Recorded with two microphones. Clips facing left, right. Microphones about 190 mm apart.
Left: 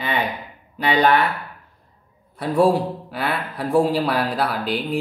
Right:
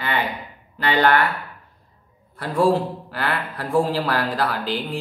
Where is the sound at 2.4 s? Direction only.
15° left (ahead or behind).